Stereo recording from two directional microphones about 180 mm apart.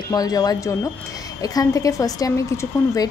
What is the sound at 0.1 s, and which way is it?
Speech, 20° left (ahead or behind).